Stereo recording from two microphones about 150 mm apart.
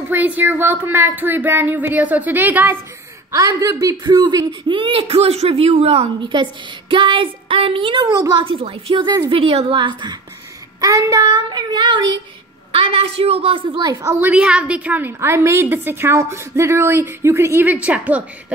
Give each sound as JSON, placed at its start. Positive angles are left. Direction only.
{"t": 0.1, "sound": "a woman's voice", "side_deg": -10}
{"t": 8.4, "sound": "speech", "side_deg": -35}
{"t": 9.4, "sound": "speech", "side_deg": -40}
{"t": 10.8, "sound": "child singing", "side_deg": -25}
{"t": 12.7, "sound": "speech", "side_deg": -40}
{"t": 14.2, "sound": "a woman's voice", "side_deg": -5}